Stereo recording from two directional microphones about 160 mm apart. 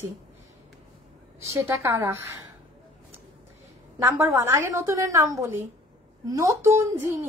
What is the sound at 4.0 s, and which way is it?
A woman's voice, 10° right (ahead or behind).